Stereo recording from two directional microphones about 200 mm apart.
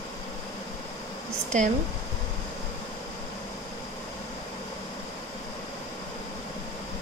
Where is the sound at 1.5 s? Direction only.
40° right (ahead or behind).